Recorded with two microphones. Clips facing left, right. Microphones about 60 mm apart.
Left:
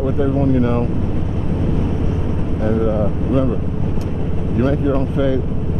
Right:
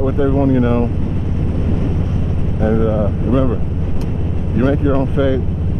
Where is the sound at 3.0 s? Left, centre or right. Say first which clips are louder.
Right 2 dB; centre.